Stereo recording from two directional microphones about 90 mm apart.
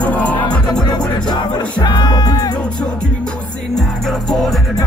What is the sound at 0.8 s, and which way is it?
Music, 55° left (ahead or behind).